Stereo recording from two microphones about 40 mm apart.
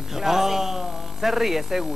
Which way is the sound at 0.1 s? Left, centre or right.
Centre.